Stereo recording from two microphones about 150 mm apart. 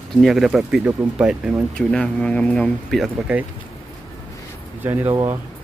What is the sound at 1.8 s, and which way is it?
Speech, 5° left (ahead or behind).